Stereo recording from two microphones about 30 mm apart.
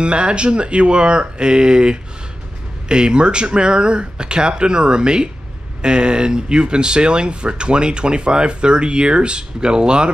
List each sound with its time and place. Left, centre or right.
0.0 s speech: right